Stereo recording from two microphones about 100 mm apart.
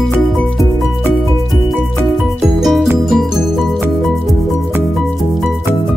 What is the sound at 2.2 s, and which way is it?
Music, 5° right (ahead or behind).